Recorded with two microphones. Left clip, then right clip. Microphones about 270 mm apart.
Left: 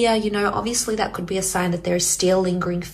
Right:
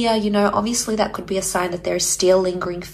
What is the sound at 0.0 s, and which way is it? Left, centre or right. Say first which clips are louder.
A woman's voice: right 1 dB; centre.